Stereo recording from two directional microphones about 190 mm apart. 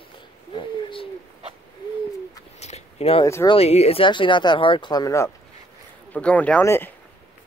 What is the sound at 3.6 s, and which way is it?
Speech, 35° left (ahead or behind).